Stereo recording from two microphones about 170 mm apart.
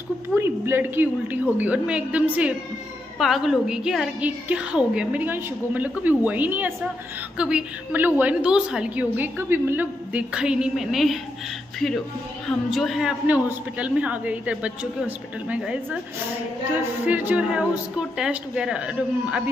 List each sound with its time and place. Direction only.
0.4 s a woman's voice: 15° right (ahead or behind)
12.4 s a woman's voice: centre (ahead or behind)
17.0 s a woman's voice: 10° right (ahead or behind)